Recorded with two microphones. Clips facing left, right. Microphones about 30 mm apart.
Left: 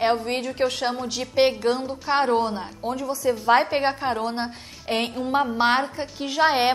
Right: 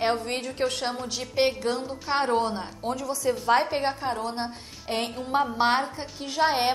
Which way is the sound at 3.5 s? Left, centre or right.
Centre.